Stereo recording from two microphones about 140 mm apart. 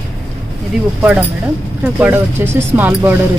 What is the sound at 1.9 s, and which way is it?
Speech, 15° right (ahead or behind).